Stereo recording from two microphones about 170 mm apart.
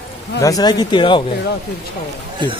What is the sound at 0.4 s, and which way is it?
Speech, 20° left (ahead or behind).